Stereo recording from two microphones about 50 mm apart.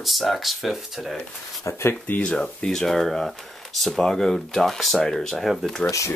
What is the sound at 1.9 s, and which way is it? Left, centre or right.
Speech, left.